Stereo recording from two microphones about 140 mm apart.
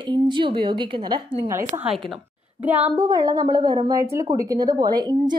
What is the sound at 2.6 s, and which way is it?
Speech, 10° right (ahead or behind).